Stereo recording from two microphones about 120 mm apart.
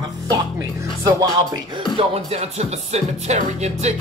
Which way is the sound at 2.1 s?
60° right (ahead or behind).